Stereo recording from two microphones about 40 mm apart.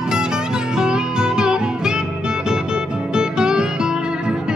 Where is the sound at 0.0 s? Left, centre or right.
Centre.